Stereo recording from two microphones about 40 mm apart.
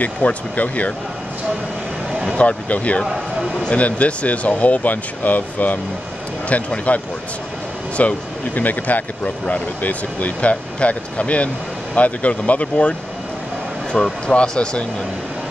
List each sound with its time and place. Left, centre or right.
0.0 s speech: left
2.3 s speech: left
8.0 s speech: left
13.9 s speech: centre